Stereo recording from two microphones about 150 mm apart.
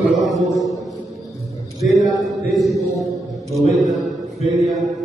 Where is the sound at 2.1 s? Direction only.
Centre (ahead or behind).